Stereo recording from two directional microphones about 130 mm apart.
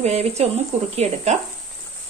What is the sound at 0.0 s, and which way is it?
Speech, 55° right (ahead or behind).